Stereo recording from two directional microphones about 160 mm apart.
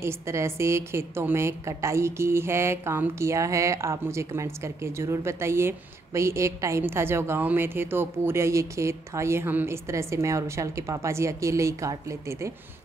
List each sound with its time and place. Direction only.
0.0 s a woman's voice: 15° right (ahead or behind)